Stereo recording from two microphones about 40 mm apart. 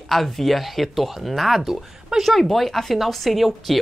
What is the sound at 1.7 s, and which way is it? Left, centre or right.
Speech, centre.